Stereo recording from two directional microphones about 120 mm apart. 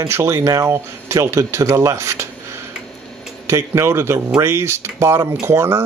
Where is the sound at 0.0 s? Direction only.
20° right (ahead or behind).